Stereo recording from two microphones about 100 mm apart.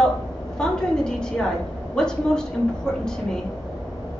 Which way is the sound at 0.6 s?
5° left (ahead or behind).